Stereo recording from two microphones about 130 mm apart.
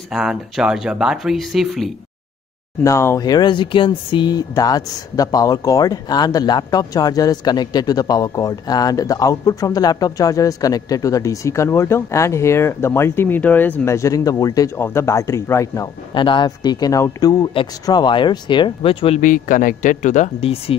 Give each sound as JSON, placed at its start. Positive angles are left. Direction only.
{"t": 0.1, "sound": "speech", "side_deg": -5}
{"t": 2.8, "sound": "speech", "side_deg": 20}
{"t": 16.2, "sound": "speech", "side_deg": 40}
{"t": 19.2, "sound": "speech", "side_deg": 90}
{"t": 20.3, "sound": "speech", "side_deg": 50}